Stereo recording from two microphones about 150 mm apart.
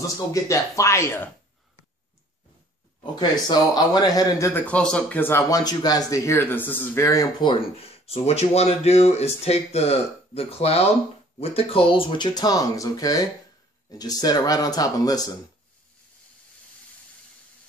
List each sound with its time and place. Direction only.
0.0 s speech: 20° left (ahead or behind)
3.2 s speech: 30° left (ahead or behind)
4.6 s speech: 10° left (ahead or behind)
5.5 s speech: 25° left (ahead or behind)